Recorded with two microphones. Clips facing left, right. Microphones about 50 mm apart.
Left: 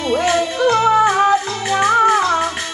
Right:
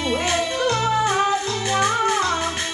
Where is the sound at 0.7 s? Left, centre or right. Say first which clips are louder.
Left 8 dB; left.